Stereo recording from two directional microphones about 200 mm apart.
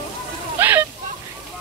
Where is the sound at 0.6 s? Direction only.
10° right (ahead or behind).